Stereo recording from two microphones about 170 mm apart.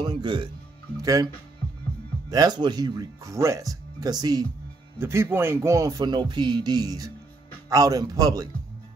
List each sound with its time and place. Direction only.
0.0 s music: 25° right (ahead or behind)
1.0 s speech: 20° right (ahead or behind)